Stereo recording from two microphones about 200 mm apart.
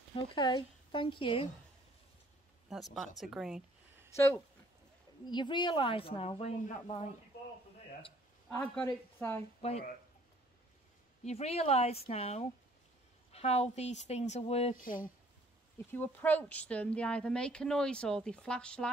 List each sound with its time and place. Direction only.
0.1 s speech: 25° left (ahead or behind)
2.7 s a woman's voice: centre (ahead or behind)
5.2 s speech: 20° left (ahead or behind)
8.5 s a woman's voice: 10° left (ahead or behind)
9.6 s speech: 30° left (ahead or behind)
11.2 s a woman's voice: 30° left (ahead or behind)
15.9 s a woman's voice: 10° left (ahead or behind)